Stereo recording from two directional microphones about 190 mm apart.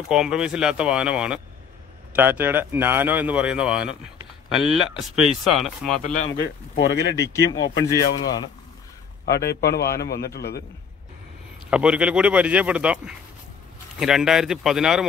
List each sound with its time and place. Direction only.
0.1 s speech: 5° right (ahead or behind)
6.2 s a man's voice: 60° left (ahead or behind)
7.2 s speech: 20° left (ahead or behind)
8.1 s a man's voice: 65° left (ahead or behind)
11.7 s speech: 5° right (ahead or behind)